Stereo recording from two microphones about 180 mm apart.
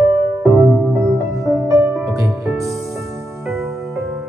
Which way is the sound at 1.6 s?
15° right (ahead or behind).